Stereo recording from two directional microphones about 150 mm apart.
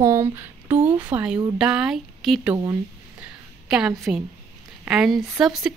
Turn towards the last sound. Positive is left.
turn(degrees=-5)  # may be behind; listen again after turning